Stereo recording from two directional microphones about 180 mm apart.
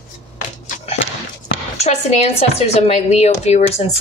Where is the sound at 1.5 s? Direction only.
35° left (ahead or behind).